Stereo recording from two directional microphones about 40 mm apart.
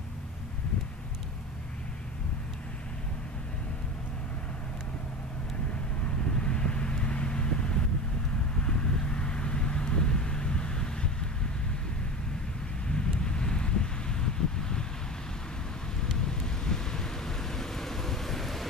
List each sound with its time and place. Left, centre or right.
6.0 s vehicle: left
12.9 s wind noise: left
16.2 s thunder: centre